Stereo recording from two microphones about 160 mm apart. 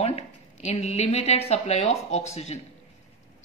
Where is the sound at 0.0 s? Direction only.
40° left (ahead or behind).